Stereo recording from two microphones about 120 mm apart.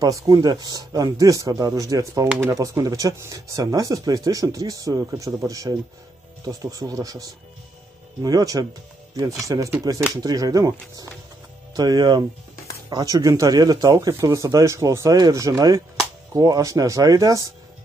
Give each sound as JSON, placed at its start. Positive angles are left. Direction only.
{"t": 0.0, "sound": "speech", "side_deg": -30}